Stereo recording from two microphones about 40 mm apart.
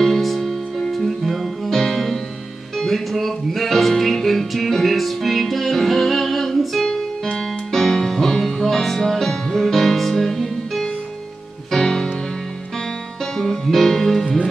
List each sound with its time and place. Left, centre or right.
0.0 s music: centre
13.2 s music: centre